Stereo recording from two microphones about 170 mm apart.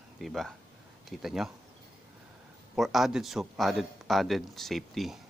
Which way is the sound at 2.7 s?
Centre (ahead or behind).